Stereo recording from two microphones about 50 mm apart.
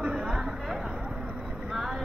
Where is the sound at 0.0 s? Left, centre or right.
Right.